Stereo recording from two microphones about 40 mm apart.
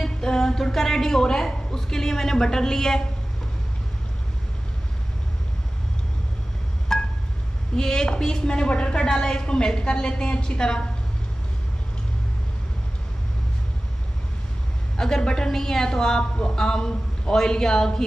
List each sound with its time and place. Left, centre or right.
0.0 s a woman's voice: centre
6.9 s a sound: centre
7.7 s a man's voice: centre
8.5 s a woman's voice: left
15.0 s a man's voice: centre